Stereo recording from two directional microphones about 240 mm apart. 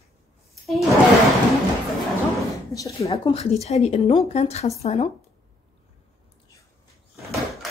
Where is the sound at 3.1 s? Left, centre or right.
Left.